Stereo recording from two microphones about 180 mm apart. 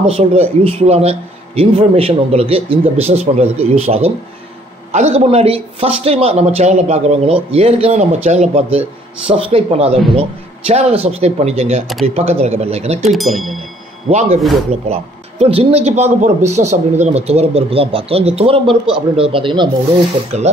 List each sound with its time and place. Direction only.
0.0 s a man's voice: 35° right (ahead or behind)
13.0 s speech: centre (ahead or behind)
14.0 s a man's voice: 40° right (ahead or behind)
20.3 s a man's voice: 40° right (ahead or behind)